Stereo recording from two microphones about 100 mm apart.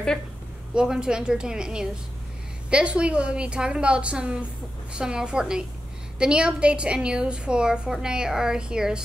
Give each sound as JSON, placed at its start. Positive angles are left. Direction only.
{"t": 0.7, "sound": "a woman's voice", "side_deg": -10}